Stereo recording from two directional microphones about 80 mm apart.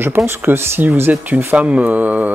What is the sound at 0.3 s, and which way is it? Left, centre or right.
Speech, right.